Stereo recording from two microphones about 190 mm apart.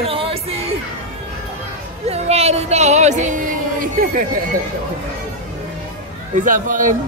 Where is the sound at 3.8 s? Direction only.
45° right (ahead or behind).